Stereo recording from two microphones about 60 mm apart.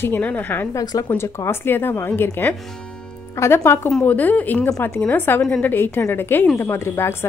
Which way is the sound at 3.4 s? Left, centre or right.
Left.